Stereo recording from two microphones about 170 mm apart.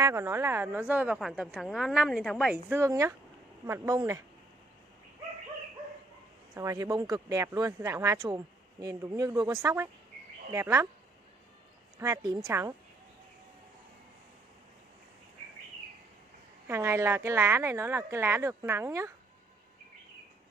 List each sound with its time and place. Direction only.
0.0 s a woman's voice: 15° right (ahead or behind)
6.5 s a woman's voice: 20° right (ahead or behind)
12.0 s a woman's voice: 20° right (ahead or behind)
16.6 s a woman's voice: 15° right (ahead or behind)